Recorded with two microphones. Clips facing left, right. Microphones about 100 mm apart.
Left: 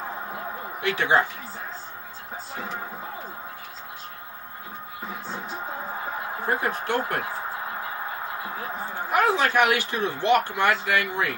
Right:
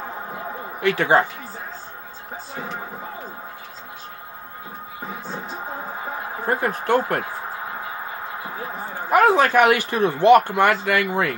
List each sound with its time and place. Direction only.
0.7 s speech: 50° right (ahead or behind)
6.4 s speech: 45° right (ahead or behind)
9.1 s speech: 50° right (ahead or behind)